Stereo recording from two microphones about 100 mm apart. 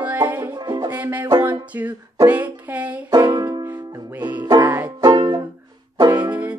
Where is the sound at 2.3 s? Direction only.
15° right (ahead or behind).